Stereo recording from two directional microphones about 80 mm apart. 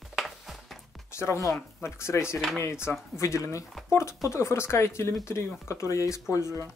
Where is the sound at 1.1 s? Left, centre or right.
Left.